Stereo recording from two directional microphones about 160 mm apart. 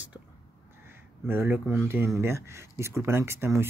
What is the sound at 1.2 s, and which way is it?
Speech, 10° right (ahead or behind).